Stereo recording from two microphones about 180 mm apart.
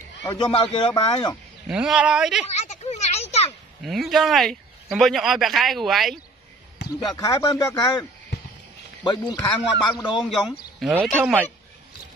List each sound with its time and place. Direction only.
0.3 s a man's voice: 30° left (ahead or behind)
1.7 s speech: 5° right (ahead or behind)
2.6 s a sound: 40° left (ahead or behind)
3.8 s speech: centre (ahead or behind)
7.1 s a man's voice: 20° left (ahead or behind)
10.1 s speech: centre (ahead or behind)